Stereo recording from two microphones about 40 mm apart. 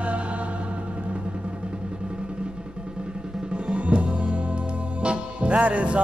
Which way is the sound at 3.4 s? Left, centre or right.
Right.